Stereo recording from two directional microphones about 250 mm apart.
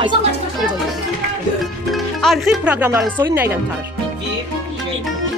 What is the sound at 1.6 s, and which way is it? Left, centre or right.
Speech, centre.